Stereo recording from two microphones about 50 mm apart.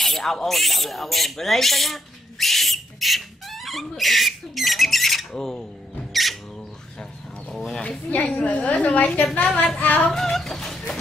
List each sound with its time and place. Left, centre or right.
0.0 s speech: centre
7.5 s speech: centre
8.1 s a woman's voice: left
9.8 s music: left
10.1 s a sound: centre